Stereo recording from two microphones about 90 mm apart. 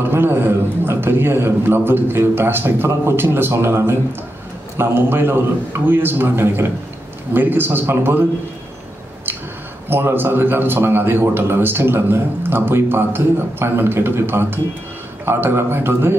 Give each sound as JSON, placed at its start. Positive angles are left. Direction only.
{"t": 0.0, "sound": "speech", "side_deg": -25}
{"t": 9.8, "sound": "speech", "side_deg": -25}